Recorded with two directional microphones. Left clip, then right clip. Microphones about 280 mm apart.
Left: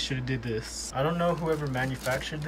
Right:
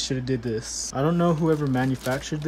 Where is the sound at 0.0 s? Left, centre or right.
Centre.